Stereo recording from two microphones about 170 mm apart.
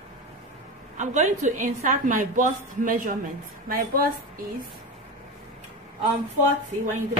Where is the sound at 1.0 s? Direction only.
45° right (ahead or behind).